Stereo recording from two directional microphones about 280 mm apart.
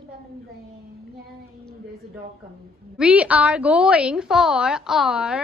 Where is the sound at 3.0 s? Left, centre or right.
Centre.